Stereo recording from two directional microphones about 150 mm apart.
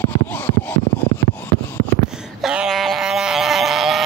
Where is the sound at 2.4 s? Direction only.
5° right (ahead or behind).